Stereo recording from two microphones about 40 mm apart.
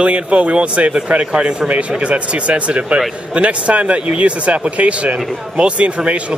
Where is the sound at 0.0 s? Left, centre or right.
Right.